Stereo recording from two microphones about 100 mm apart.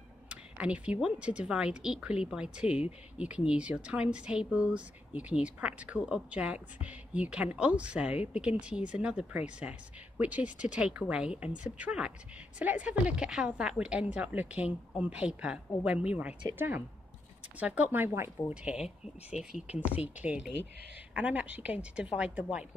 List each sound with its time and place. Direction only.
0.3 s speech: 10° right (ahead or behind)
18.5 s speech: 10° right (ahead or behind)
19.9 s speech: 15° right (ahead or behind)